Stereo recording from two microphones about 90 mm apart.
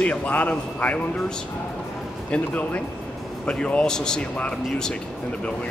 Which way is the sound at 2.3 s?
20° left (ahead or behind).